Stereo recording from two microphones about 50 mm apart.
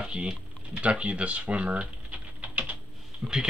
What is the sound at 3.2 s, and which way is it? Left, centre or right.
Speech, centre.